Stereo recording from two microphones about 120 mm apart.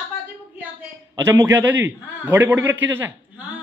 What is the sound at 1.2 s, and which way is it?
A man's voice, 20° right (ahead or behind).